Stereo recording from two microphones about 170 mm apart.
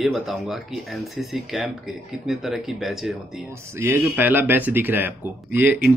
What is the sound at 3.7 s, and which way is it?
Speech, 15° right (ahead or behind).